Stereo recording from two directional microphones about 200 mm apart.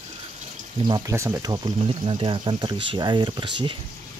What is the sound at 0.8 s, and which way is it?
Speech, 20° right (ahead or behind).